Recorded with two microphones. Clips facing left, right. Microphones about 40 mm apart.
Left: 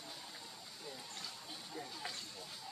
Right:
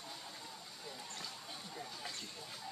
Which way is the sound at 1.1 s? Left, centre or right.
Centre.